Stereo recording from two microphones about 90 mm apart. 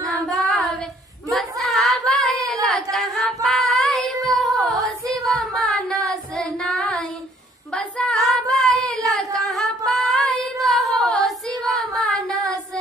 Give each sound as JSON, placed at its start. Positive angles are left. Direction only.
{"t": 0.0, "sound": "child singing", "side_deg": 0}
{"t": 1.3, "sound": "a sound", "side_deg": 0}
{"t": 3.4, "sound": "child singing", "side_deg": 5}
{"t": 5.0, "sound": "a sound", "side_deg": -40}
{"t": 5.7, "sound": "child singing", "side_deg": 5}
{"t": 9.1, "sound": "female singing", "side_deg": 0}